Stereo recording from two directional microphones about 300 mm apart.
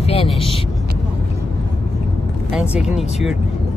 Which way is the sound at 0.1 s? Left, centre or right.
Centre.